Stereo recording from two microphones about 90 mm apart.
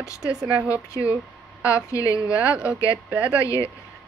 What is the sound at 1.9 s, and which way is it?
Speech, 40° left (ahead or behind).